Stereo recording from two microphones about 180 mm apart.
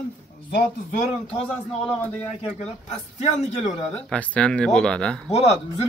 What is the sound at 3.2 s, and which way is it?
Speech, 40° left (ahead or behind).